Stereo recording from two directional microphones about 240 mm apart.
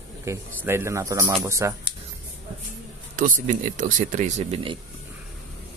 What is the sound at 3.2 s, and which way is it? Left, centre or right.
Speech, right.